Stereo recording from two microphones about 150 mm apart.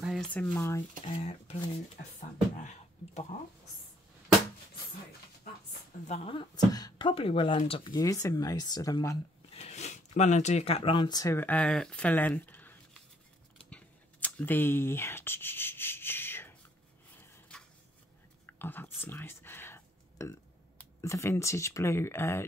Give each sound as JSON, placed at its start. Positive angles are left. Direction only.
{"t": 0.0, "sound": "a sound", "side_deg": 0}
{"t": 0.3, "sound": "speech", "side_deg": 15}
{"t": 1.1, "sound": "speech", "side_deg": 45}
{"t": 3.3, "sound": "speech", "side_deg": 65}
{"t": 6.0, "sound": "speech", "side_deg": 40}
{"t": 6.5, "sound": "speech", "side_deg": 25}
{"t": 7.9, "sound": "speech", "side_deg": 20}
{"t": 9.5, "sound": "speech", "side_deg": 45}
{"t": 11.3, "sound": "speech", "side_deg": 10}
{"t": 13.7, "sound": "a sound", "side_deg": 10}
{"t": 18.5, "sound": "a sound", "side_deg": 15}
{"t": 21.0, "sound": "speech", "side_deg": 20}